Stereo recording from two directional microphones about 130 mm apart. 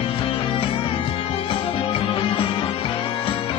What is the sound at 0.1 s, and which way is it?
Music, 45° left (ahead or behind).